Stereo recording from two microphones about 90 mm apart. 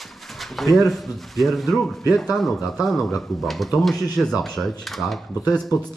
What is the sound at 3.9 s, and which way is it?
Speech, 45° left (ahead or behind).